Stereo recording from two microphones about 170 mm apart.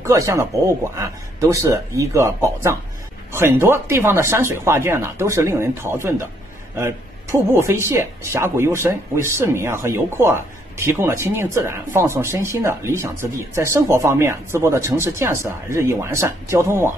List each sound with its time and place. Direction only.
0.0 s speech: 20° right (ahead or behind)